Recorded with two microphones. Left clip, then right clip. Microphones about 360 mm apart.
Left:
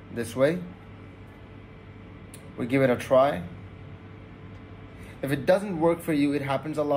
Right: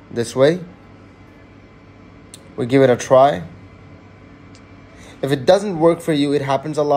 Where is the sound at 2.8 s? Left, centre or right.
Right.